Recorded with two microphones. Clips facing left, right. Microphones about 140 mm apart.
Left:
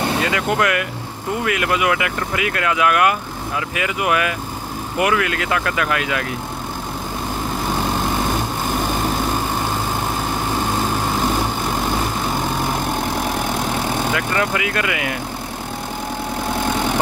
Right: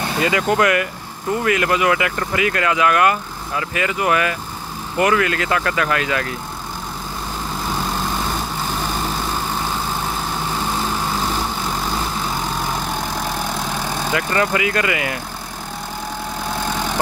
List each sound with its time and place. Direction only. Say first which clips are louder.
0.2 s speech: right 2 dB; centre (ahead or behind)
11.1 s vehicle: left 3 dB; 20° left (ahead or behind)
14.1 s speech: right 1 dB; centre (ahead or behind)